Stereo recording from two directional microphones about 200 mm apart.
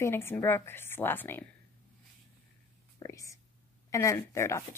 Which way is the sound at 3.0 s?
15° left (ahead or behind).